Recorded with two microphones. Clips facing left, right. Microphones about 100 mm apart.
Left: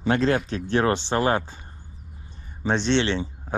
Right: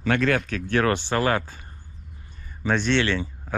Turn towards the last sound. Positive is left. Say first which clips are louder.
# even
turn(degrees=20)  # may be behind; listen again after turning